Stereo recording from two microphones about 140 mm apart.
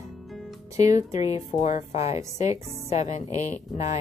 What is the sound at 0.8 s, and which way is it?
Speech, 25° right (ahead or behind).